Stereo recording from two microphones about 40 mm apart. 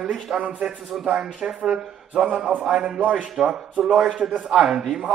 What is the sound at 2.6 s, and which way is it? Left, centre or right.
Speech, centre.